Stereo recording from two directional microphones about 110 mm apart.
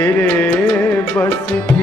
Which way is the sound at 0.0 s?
15° left (ahead or behind).